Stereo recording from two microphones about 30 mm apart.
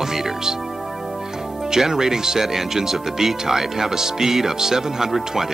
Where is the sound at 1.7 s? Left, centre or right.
Centre.